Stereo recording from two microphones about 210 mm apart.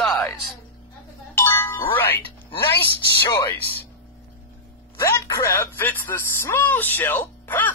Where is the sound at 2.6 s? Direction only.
10° left (ahead or behind).